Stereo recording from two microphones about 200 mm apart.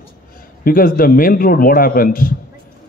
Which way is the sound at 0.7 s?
45° left (ahead or behind).